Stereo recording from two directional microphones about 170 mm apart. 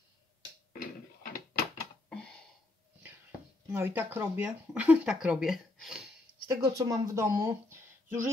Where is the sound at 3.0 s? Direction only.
10° right (ahead or behind).